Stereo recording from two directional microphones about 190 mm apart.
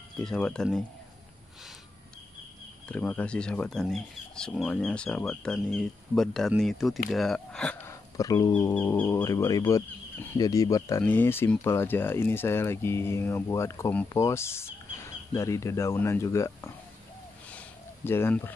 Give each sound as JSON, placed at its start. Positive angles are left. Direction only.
{"t": 0.2, "sound": "speech", "side_deg": 5}
{"t": 2.9, "sound": "speech", "side_deg": 10}
{"t": 17.5, "sound": "a sound", "side_deg": 10}